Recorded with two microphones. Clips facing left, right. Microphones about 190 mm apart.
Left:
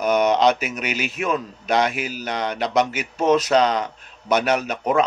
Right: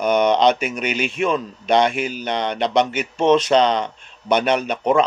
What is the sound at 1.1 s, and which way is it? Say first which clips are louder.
Speech: right 3 dB; 30° right (ahead or behind).